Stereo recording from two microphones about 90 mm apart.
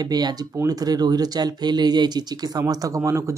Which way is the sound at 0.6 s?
45° right (ahead or behind).